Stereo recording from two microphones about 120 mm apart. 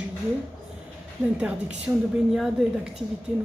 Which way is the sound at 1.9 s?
20° right (ahead or behind).